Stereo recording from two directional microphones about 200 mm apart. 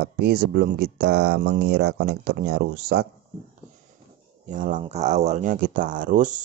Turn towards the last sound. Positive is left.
turn(degrees=-40)  # may be behind; listen again after turning